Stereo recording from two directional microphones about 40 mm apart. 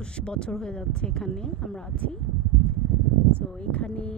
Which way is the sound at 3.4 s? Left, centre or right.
Left.